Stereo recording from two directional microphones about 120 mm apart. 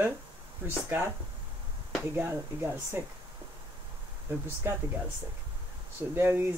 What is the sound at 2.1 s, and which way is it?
Speech, 15° right (ahead or behind).